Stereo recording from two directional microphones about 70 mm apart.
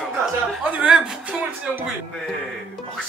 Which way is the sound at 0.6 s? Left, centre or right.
Right.